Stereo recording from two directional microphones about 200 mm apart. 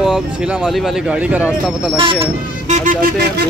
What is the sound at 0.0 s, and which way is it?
Speech, 5° right (ahead or behind).